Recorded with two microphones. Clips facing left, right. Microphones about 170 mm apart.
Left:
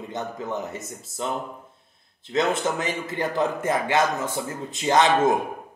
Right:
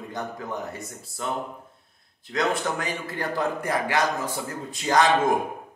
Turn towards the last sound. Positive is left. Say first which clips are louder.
# left 2 dB
turn(degrees=25)  # may be behind; listen again after turning